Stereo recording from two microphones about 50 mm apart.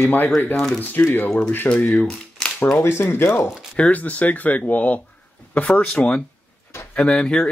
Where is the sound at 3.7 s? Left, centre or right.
Left.